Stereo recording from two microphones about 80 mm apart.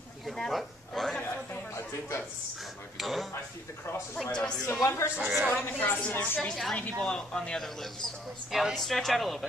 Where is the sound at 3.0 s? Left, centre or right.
Centre.